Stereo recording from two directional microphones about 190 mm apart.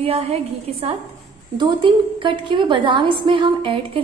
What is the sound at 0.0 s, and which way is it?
A woman's voice, 30° right (ahead or behind).